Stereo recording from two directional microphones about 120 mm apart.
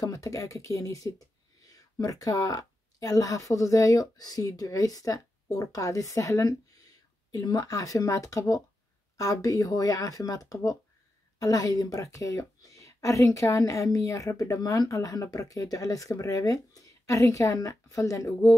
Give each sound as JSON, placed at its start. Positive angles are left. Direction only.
{"t": 0.0, "sound": "a woman's voice", "side_deg": 30}